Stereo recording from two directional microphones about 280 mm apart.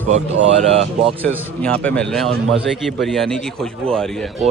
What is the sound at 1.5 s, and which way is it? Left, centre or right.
A man's voice, centre.